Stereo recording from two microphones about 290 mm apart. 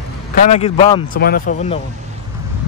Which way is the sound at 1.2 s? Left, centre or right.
Left.